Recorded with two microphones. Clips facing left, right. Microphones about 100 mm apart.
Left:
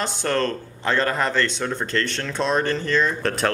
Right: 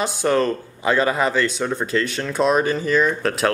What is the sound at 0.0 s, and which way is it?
Speech, 5° right (ahead or behind).